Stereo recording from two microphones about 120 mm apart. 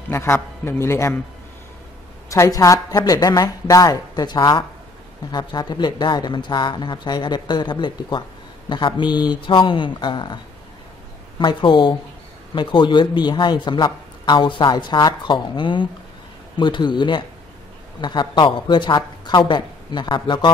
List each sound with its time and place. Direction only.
0.1 s a man's voice: 20° left (ahead or behind)
2.2 s speech: 25° left (ahead or behind); by 20.5 s 40° left (ahead or behind)